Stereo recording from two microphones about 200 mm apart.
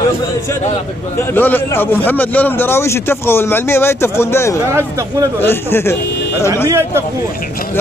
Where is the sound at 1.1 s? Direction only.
10° left (ahead or behind).